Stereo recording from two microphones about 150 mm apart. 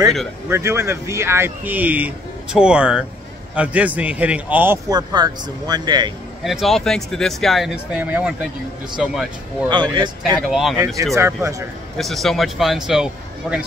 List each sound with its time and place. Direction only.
0.5 s speech: 20° right (ahead or behind)
4.8 s speech: 25° right (ahead or behind)
6.4 s speech: centre (ahead or behind)
9.7 s speech: 30° right (ahead or behind)
10.5 s speech: centre (ahead or behind)
11.1 s speech: 20° right (ahead or behind)
12.0 s speech: centre (ahead or behind)